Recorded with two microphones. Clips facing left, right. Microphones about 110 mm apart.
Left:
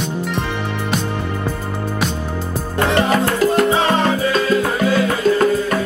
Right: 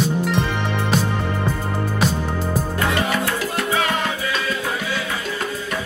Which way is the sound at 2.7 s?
35° left (ahead or behind).